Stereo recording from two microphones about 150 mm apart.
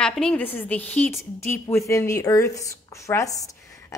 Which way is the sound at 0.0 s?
5° left (ahead or behind).